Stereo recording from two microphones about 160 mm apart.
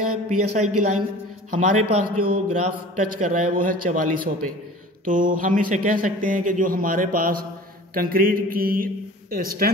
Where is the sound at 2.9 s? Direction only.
55° right (ahead or behind).